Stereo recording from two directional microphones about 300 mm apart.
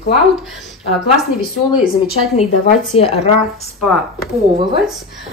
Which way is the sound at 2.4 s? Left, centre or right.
Left.